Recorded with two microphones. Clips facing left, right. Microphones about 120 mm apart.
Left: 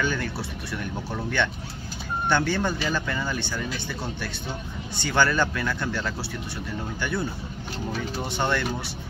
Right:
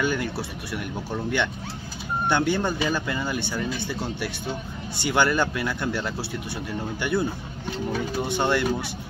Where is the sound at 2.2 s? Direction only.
15° right (ahead or behind).